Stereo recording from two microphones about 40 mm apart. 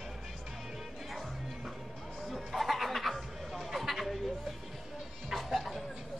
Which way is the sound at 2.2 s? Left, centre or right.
Centre.